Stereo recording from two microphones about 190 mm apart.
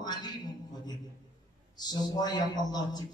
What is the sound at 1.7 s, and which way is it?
A man's voice, 20° left (ahead or behind).